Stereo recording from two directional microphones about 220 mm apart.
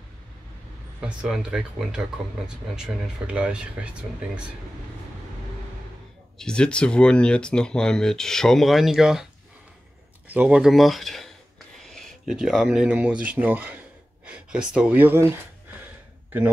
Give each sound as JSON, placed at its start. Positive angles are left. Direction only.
{"t": 1.0, "sound": "speech", "side_deg": -5}
{"t": 6.3, "sound": "speech", "side_deg": 5}
{"t": 10.2, "sound": "speech", "side_deg": -5}